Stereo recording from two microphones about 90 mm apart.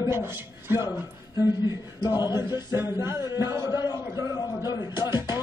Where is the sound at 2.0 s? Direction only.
50° left (ahead or behind).